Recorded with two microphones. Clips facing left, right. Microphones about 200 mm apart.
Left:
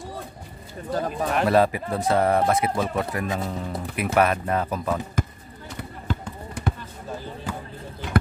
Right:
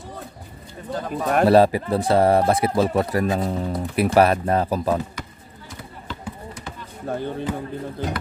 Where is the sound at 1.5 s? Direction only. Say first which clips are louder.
Right 5 dB; 30° right (ahead or behind).